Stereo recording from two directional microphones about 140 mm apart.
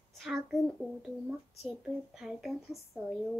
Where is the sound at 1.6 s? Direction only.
Centre (ahead or behind).